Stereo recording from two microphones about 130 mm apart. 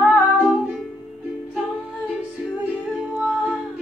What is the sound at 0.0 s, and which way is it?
Music, 10° right (ahead or behind).